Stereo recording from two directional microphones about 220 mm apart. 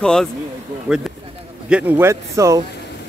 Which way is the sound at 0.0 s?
5° left (ahead or behind).